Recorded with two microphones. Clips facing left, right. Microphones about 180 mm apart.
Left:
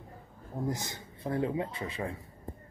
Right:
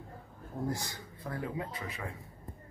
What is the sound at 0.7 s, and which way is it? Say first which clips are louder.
Speech: left 1 dB; 20° left (ahead or behind).